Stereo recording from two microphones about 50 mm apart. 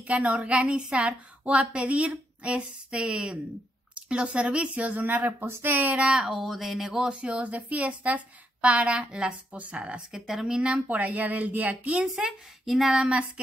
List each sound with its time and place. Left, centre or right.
0.0 s a woman's voice: right
6.2 s speech: centre
7.1 s a woman's voice: right
10.1 s speech: centre
10.4 s a woman's voice: centre
10.9 s speech: right
12.6 s a sound: centre